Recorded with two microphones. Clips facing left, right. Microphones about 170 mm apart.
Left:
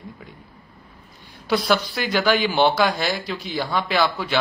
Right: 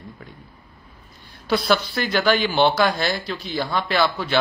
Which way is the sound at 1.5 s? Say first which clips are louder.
Even; 15° left (ahead or behind).